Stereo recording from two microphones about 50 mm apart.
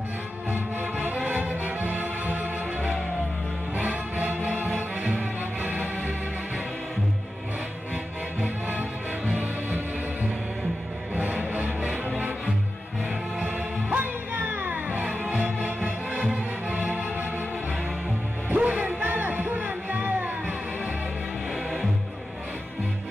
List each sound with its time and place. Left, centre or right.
0.5 s music: right
3.7 s music: right
8.4 s music: right
11.1 s music: right
13.8 s music: right
15.0 s music: right
18.5 s music: right